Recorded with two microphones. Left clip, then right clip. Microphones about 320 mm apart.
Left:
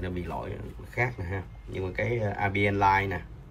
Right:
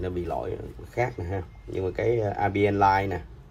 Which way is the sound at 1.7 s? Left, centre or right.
Centre.